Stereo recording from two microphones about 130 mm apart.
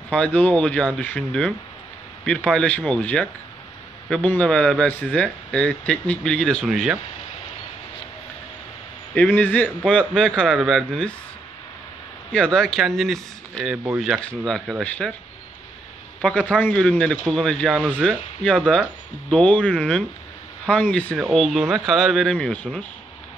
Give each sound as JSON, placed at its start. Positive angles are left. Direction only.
{"t": 0.1, "sound": "a man's voice", "side_deg": 10}
{"t": 9.1, "sound": "a man's voice", "side_deg": 10}
{"t": 12.3, "sound": "a man's voice", "side_deg": 5}
{"t": 14.4, "sound": "a man's voice", "side_deg": 5}
{"t": 16.2, "sound": "a man's voice", "side_deg": 10}
{"t": 21.2, "sound": "a man's voice", "side_deg": 0}